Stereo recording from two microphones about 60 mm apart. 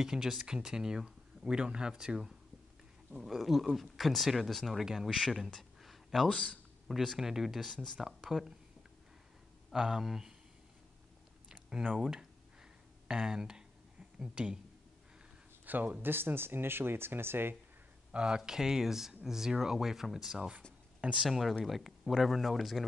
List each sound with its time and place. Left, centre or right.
0.0 s speech: centre
5.5 s a sound: centre
6.2 s speech: centre
6.9 s speech: centre
8.0 s speech: centre
9.7 s speech: centre
12.0 s speech: centre
15.6 s speech: right
18.1 s speech: centre
21.3 s speech: centre